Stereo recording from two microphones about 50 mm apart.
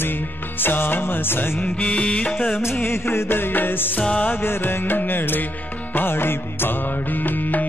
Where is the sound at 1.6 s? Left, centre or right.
Left.